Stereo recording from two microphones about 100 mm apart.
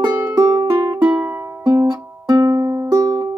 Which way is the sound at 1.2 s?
25° right (ahead or behind).